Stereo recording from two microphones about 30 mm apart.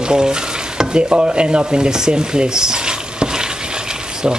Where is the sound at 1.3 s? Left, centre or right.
Right.